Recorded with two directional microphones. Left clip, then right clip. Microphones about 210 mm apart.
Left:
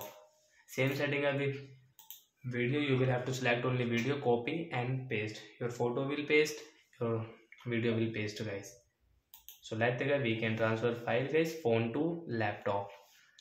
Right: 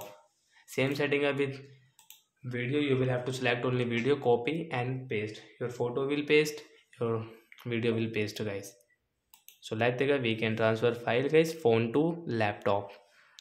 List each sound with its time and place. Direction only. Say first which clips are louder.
0.7 s speech: right 4 dB; 45° right (ahead or behind)
2.4 s a man's voice: right 3 dB; 30° right (ahead or behind)